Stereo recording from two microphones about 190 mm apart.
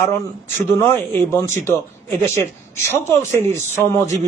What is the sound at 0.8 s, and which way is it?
A man's voice, 10° left (ahead or behind).